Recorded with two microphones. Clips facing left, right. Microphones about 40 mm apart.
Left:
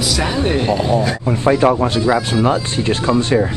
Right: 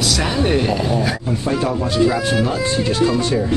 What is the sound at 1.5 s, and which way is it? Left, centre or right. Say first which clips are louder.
Speech: left 7 dB; left.